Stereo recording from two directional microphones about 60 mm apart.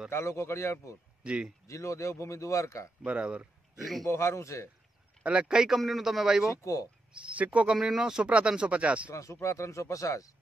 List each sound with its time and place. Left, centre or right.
0.1 s a man's voice: left
1.2 s speech: centre
1.7 s speech: left
3.0 s speech: right
4.1 s a man's voice: left
5.2 s a man's voice: centre
6.5 s speech: left
7.2 s speech: right
7.7 s speech: centre
9.1 s speech: left